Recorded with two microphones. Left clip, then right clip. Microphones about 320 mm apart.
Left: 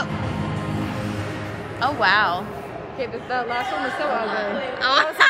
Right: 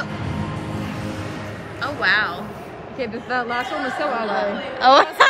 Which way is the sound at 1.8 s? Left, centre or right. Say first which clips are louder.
Left 1 dB; centre.